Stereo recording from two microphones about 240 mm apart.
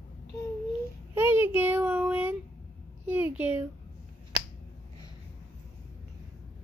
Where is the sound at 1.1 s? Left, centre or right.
Centre.